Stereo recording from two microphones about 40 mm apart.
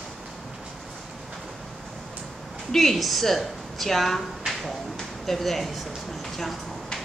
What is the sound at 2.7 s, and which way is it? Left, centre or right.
A woman's voice, centre.